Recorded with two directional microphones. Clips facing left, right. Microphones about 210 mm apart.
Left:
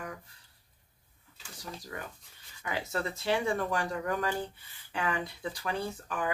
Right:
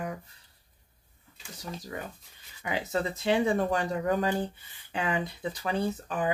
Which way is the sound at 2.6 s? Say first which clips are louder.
Right 4 dB; 20° right (ahead or behind).